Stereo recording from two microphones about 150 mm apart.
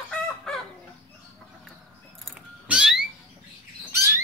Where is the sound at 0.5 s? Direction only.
5° left (ahead or behind).